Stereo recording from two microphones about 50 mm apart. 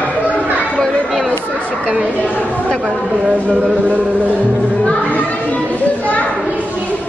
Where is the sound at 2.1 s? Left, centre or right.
Left.